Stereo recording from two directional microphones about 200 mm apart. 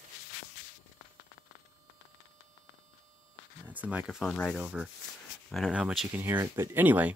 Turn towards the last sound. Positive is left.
turn(degrees=-10)  # may be behind; listen again after turning